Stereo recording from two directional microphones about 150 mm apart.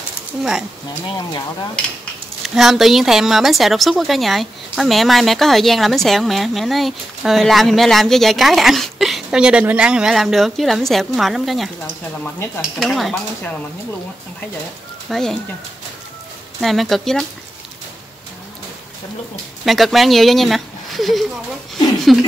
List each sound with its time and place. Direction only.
0.4 s speech: 5° right (ahead or behind)
2.4 s speech: centre (ahead or behind)
12.7 s speech: centre (ahead or behind)
15.0 s speech: 5° left (ahead or behind)
16.6 s speech: centre (ahead or behind)
19.6 s speech: centre (ahead or behind)